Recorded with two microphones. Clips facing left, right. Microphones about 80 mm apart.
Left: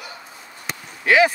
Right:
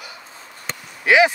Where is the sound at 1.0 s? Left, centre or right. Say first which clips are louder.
Right 1 dB; centre.